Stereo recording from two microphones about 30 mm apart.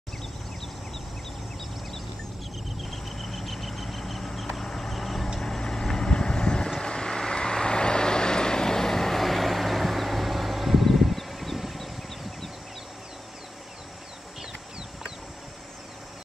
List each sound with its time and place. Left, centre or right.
2.8 s vehicle: centre
4.6 s a sound: centre
4.9 s vehicle: centre
5.4 s vehicle: centre